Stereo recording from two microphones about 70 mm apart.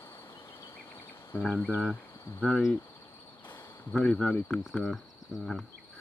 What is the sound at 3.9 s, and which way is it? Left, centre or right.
Cricket, centre.